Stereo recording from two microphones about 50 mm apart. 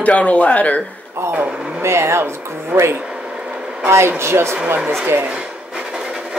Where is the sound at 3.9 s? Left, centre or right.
Right.